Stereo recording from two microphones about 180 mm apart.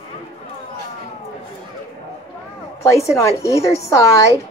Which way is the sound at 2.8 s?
15° left (ahead or behind).